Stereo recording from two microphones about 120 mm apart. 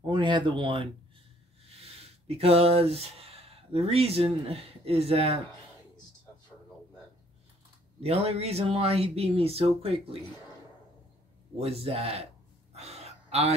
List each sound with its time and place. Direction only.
0.0 s speech: 40° right (ahead or behind)
1.8 s speech: 55° right (ahead or behind)
8.0 s speech: 60° right (ahead or behind)
11.5 s speech: 60° right (ahead or behind)
12.7 s gasp: 60° right (ahead or behind)